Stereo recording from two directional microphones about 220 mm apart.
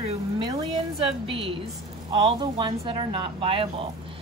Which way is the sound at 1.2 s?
25° right (ahead or behind).